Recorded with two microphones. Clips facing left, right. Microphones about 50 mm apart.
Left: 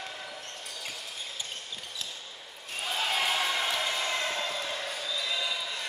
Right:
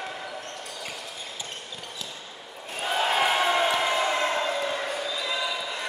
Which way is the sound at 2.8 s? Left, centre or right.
Right.